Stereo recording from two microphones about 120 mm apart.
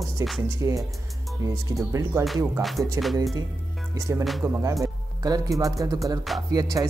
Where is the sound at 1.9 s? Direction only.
25° right (ahead or behind).